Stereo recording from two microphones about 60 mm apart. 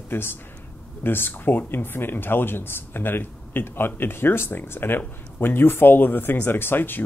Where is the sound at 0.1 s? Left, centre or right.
Left.